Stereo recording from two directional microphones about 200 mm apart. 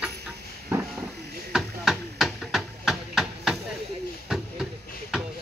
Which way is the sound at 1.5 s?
Centre (ahead or behind).